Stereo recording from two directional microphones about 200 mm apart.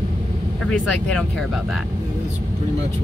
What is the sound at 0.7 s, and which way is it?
Speech, 5° left (ahead or behind).